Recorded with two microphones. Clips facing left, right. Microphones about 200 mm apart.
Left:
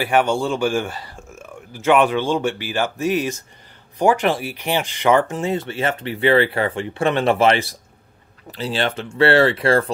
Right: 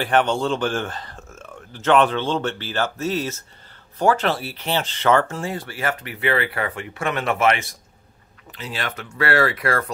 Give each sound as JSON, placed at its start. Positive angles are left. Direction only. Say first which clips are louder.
{"t": 0.0, "sound": "speech", "louder": "left 1 dB", "side_deg": 10}